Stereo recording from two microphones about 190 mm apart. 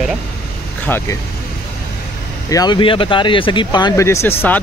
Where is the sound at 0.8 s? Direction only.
10° left (ahead or behind).